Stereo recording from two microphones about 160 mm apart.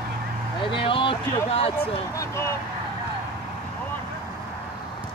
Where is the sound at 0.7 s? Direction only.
35° left (ahead or behind).